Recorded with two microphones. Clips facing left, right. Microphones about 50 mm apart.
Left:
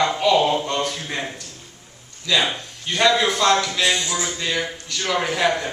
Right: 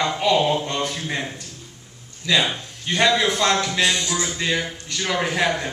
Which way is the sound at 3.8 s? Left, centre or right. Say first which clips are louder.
Even; centre.